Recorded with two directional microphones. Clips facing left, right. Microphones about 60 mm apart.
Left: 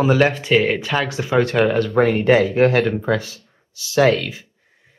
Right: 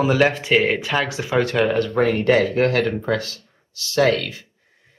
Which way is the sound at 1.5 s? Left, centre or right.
Centre.